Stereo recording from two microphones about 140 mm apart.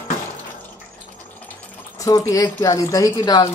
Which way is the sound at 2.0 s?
25° left (ahead or behind).